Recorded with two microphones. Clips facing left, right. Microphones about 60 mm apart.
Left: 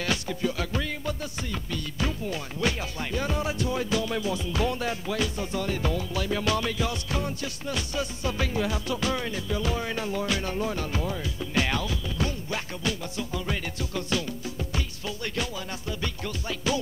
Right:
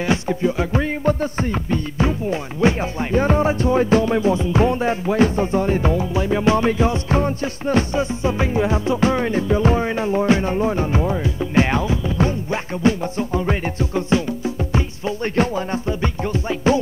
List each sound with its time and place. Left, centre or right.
0.0 s music: right